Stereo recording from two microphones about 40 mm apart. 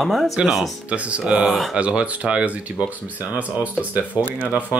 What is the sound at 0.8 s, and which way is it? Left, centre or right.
Speech, right.